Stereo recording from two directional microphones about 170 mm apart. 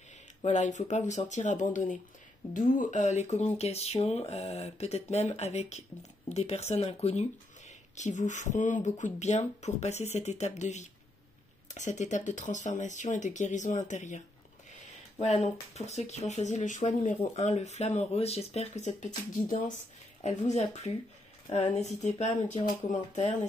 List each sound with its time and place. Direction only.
0.4 s speech: 45° left (ahead or behind)